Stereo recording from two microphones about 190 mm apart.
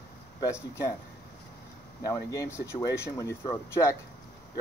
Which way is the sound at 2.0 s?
15° left (ahead or behind).